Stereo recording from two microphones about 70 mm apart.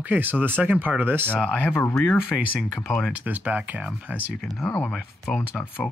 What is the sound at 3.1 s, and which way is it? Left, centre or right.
Speech, right.